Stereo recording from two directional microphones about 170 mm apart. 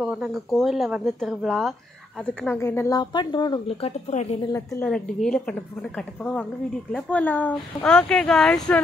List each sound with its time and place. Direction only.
0.0 s speech: 5° right (ahead or behind); by 4.4 s 40° left (ahead or behind)
4.4 s a woman's voice: 15° left (ahead or behind)
4.8 s speech: 5° left (ahead or behind)